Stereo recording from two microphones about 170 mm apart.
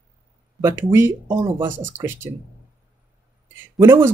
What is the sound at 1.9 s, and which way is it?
Speech, 15° right (ahead or behind).